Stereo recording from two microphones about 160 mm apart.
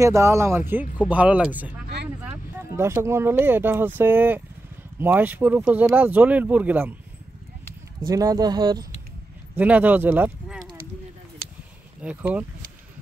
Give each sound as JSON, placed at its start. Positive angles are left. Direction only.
{"t": 0.0, "sound": "speech", "side_deg": -20}
{"t": 2.7, "sound": "speech", "side_deg": -15}
{"t": 8.1, "sound": "speech", "side_deg": -20}
{"t": 9.6, "sound": "speech", "side_deg": -10}
{"t": 12.0, "sound": "speech", "side_deg": -10}